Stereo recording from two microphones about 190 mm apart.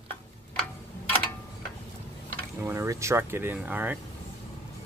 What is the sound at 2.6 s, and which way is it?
Speech, 15° right (ahead or behind).